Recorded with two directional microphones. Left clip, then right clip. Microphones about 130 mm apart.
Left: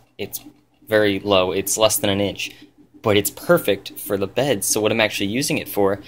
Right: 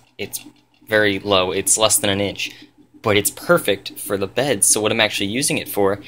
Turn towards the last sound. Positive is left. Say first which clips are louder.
# right 1 dB
turn(degrees=5)  # may be behind; listen again after turning